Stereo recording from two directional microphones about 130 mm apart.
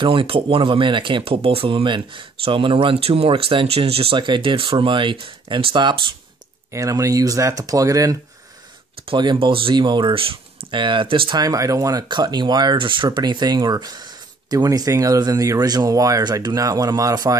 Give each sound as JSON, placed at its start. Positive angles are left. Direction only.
{"t": 0.0, "sound": "speech", "side_deg": -40}
{"t": 6.7, "sound": "speech", "side_deg": -25}
{"t": 9.0, "sound": "speech", "side_deg": -35}